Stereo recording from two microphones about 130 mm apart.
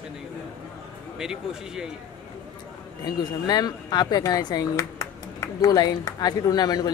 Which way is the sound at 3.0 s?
30° left (ahead or behind).